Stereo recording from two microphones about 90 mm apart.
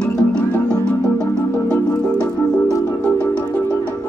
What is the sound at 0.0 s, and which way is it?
Music, 10° left (ahead or behind).